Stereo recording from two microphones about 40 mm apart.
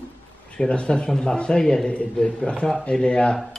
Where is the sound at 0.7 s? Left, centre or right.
Left.